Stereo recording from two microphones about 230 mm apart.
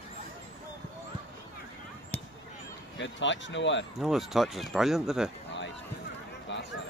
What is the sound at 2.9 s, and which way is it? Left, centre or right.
Speech, left.